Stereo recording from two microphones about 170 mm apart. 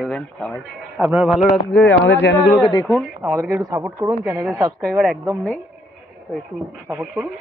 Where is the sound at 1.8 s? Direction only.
90° left.